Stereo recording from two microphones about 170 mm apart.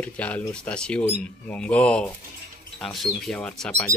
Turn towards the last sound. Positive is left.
turn(degrees=5)  # may be behind; listen again after turning